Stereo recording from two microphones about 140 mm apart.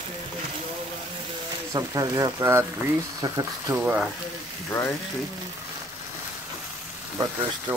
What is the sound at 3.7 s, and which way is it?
Speech, 10° right (ahead or behind).